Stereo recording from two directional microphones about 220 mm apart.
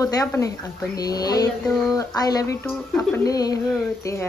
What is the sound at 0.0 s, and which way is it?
Speech, 15° left (ahead or behind).